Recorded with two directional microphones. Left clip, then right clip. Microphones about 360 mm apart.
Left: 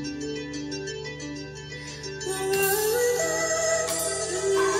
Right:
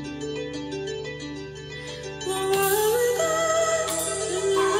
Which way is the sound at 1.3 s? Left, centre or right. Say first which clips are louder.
Right 1 dB; centre.